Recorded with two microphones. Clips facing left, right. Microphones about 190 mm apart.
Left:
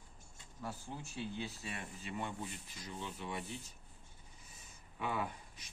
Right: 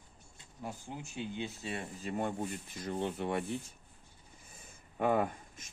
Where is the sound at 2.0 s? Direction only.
50° right (ahead or behind).